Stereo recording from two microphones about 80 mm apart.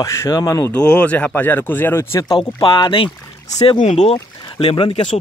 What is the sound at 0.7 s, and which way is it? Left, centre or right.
Speech, centre.